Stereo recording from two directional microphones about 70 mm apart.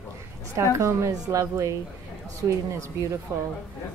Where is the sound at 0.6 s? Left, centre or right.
Right.